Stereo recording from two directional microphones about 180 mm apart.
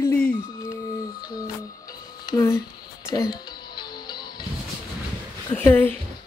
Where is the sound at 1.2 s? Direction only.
20° left (ahead or behind).